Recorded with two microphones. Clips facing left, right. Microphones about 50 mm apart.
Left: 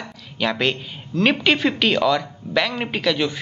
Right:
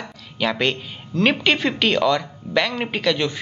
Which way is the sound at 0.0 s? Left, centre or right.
Centre.